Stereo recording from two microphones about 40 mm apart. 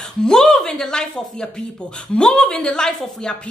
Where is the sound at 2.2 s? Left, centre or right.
Left.